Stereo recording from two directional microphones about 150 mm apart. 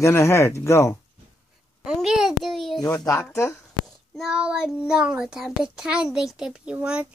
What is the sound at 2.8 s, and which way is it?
Speech, 25° left (ahead or behind).